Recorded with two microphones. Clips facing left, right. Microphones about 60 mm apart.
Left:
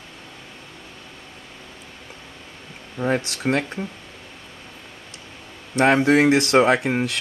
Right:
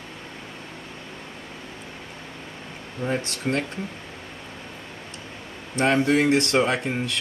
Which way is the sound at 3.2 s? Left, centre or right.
Left.